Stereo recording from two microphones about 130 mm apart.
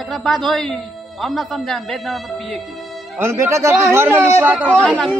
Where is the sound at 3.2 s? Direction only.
20° right (ahead or behind).